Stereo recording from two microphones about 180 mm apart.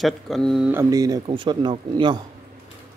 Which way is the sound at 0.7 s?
15° right (ahead or behind).